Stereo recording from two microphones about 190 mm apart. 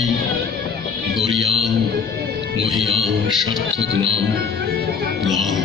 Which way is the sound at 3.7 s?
70° right (ahead or behind).